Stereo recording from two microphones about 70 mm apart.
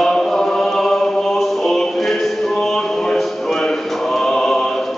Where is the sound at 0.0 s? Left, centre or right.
Centre.